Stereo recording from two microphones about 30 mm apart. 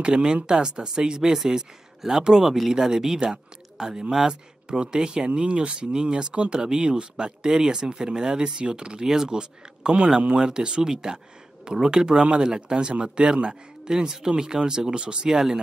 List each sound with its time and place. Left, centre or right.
0.0 s speech: right
1.4 s speech: centre
4.6 s speech: right
7.4 s speech: centre
9.0 s speech: centre
9.8 s a man's voice: right
14.8 s speech: right
15.2 s speech: centre